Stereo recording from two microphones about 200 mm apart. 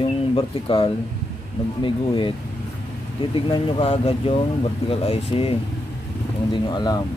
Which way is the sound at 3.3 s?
30° left (ahead or behind).